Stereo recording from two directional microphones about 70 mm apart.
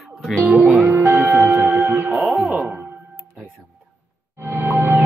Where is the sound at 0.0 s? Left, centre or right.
Centre.